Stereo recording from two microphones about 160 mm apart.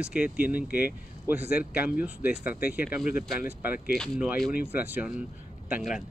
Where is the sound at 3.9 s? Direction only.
Centre (ahead or behind).